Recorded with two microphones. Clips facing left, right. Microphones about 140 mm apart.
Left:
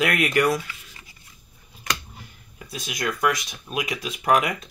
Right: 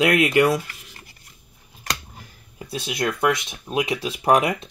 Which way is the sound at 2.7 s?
30° right (ahead or behind).